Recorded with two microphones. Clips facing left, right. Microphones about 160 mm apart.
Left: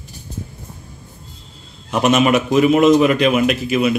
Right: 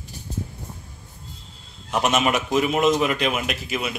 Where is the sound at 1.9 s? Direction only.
80° left.